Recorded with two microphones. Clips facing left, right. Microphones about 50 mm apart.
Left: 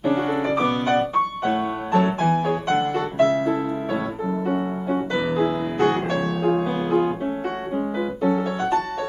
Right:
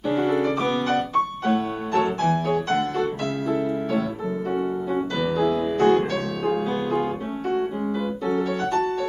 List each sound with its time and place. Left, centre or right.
0.1 s music: centre
0.8 s music: left
2.2 s music: centre
4.5 s music: left